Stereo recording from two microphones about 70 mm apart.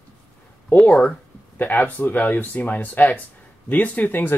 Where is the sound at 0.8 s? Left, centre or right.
Left.